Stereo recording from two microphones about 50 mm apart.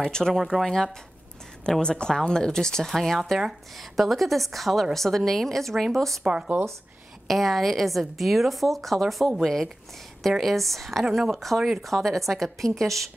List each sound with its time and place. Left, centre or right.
0.0 s speech: centre
0.4 s a woman's voice: centre
1.8 s a woman's voice: centre
6.2 s speech: centre
7.2 s a woman's voice: centre